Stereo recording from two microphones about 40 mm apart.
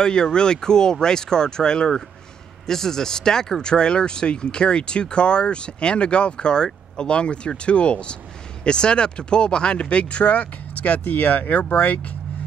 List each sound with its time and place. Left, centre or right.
0.0 s speech: centre; by 12.1 s left